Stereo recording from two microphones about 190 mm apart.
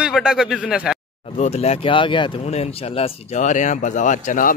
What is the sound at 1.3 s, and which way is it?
Speech, 35° left (ahead or behind).